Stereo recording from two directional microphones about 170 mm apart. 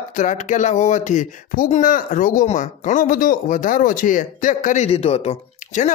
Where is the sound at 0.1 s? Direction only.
45° left (ahead or behind).